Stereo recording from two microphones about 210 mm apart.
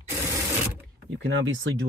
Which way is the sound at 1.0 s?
65° right (ahead or behind).